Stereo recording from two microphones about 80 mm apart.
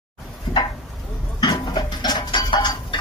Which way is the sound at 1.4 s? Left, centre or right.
Left.